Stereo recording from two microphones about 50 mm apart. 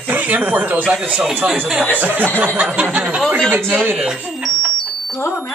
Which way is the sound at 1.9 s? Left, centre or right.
Right.